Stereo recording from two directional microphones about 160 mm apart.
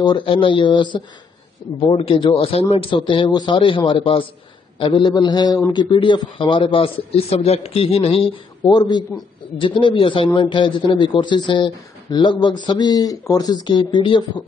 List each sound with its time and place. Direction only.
0.0 s a man's voice: 30° left (ahead or behind)